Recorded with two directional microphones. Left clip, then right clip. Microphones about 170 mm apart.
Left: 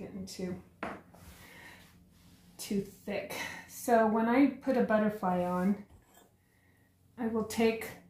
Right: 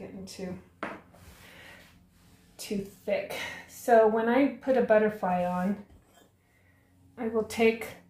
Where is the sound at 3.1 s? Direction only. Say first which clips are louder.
Right 9 dB; 35° right (ahead or behind).